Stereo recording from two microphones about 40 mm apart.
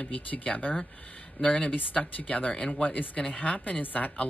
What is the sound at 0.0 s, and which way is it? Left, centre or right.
Speech, left.